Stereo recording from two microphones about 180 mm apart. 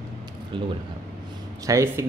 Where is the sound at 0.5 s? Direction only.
30° right (ahead or behind).